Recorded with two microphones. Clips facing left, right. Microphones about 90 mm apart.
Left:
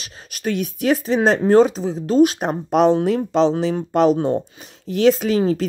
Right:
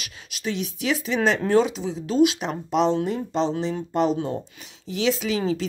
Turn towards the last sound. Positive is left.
turn(degrees=50)  # may be behind; listen again after turning